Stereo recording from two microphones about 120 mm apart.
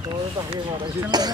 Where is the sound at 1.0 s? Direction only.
35° right (ahead or behind).